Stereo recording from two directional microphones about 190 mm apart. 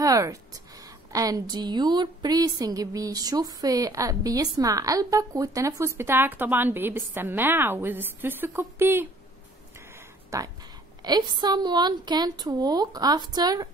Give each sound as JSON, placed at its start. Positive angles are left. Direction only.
{"t": 0.0, "sound": "a woman's voice", "side_deg": -15}
{"t": 10.3, "sound": "a woman's voice", "side_deg": -15}